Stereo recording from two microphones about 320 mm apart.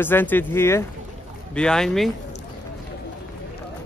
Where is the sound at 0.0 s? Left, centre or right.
Centre.